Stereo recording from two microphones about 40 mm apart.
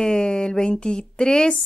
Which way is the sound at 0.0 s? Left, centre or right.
Centre.